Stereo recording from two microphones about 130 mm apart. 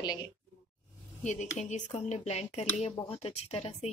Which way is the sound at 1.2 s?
65° left (ahead or behind).